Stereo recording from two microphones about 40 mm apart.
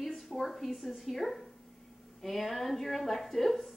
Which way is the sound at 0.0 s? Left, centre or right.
Centre.